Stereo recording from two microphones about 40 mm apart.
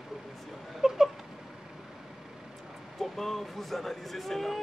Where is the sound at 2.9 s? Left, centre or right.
Centre.